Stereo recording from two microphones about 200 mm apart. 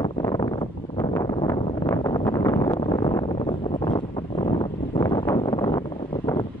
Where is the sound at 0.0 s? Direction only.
20° left (ahead or behind).